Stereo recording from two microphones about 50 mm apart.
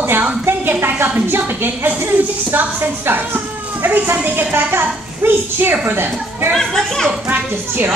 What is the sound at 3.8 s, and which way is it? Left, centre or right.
A child's voice, right.